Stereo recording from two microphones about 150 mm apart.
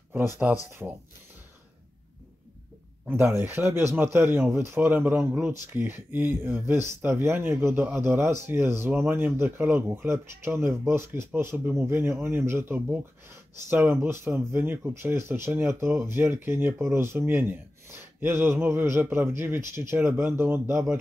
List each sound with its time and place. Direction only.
0.1 s speech: 15° right (ahead or behind)
3.1 s speech: 15° right (ahead or behind)